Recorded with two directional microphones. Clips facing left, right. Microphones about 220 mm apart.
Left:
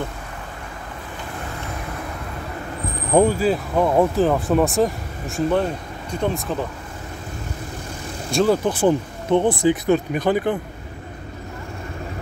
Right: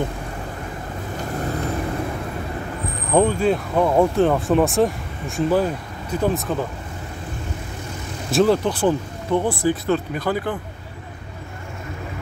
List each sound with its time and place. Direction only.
3.2 s speech: 5° left (ahead or behind)
8.3 s speech: centre (ahead or behind)
8.6 s speech: 20° left (ahead or behind)